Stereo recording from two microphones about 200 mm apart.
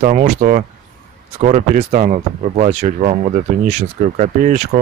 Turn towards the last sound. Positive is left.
turn(degrees=-35)  # may be behind; listen again after turning